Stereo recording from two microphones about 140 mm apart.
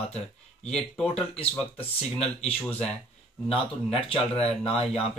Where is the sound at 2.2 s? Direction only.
45° left (ahead or behind).